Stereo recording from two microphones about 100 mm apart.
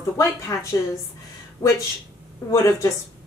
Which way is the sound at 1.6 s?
35° left (ahead or behind).